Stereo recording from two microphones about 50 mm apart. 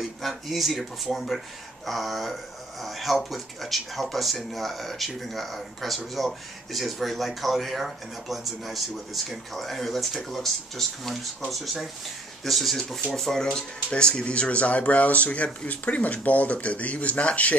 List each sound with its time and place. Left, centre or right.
0.0 s speech: centre; by 17.6 s left